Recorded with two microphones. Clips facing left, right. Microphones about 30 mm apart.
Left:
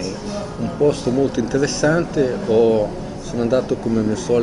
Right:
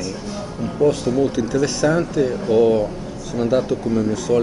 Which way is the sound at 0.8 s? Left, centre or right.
Left.